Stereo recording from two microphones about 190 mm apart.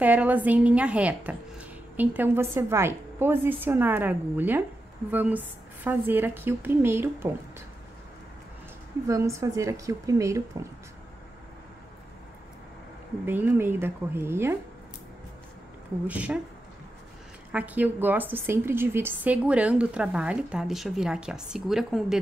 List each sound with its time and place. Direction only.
0.0 s a woman's voice: 10° right (ahead or behind)
9.0 s a woman's voice: 15° right (ahead or behind)
13.2 s a woman's voice: 10° right (ahead or behind)
16.1 s a woman's voice: 10° right (ahead or behind)
17.5 s a woman's voice: 10° right (ahead or behind)